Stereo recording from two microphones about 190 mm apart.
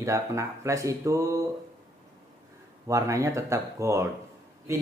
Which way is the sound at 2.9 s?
15° right (ahead or behind).